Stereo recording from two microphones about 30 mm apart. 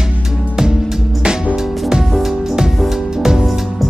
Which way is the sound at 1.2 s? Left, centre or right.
Right.